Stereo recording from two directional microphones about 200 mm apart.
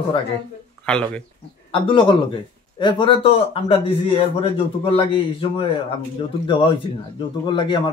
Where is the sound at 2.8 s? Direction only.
25° left (ahead or behind).